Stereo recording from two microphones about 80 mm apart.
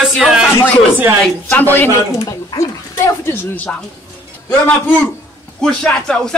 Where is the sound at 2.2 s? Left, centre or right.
Left.